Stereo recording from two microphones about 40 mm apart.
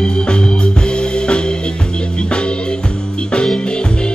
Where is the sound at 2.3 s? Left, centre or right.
Left.